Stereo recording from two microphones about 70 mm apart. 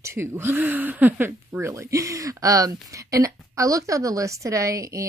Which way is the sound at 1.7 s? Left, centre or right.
Right.